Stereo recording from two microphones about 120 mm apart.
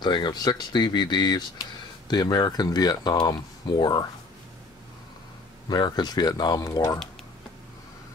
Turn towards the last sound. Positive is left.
turn(degrees=30)  # may be behind; listen again after turning